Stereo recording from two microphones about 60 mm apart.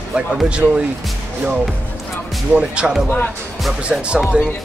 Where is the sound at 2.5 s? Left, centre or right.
Centre.